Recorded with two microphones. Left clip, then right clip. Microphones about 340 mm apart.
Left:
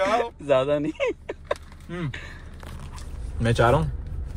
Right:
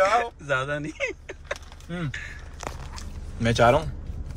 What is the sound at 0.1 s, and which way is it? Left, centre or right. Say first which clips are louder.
Speech: left 2 dB; centre.